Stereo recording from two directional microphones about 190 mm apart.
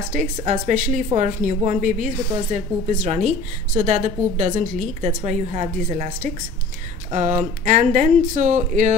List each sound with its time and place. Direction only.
0.1 s a woman's voice: 45° right (ahead or behind)